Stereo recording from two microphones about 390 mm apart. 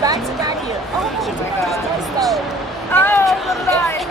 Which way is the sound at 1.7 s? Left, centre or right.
Centre.